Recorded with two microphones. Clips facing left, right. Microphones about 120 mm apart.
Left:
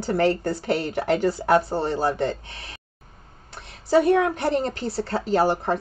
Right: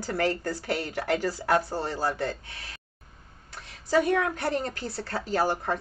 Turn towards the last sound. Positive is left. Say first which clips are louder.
# left 6 dB
turn(degrees=25)  # may be behind; listen again after turning